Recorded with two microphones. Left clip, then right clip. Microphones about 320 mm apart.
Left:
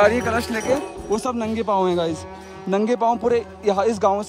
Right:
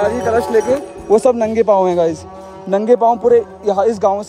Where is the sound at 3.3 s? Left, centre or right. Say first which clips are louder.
Right 6 dB; centre.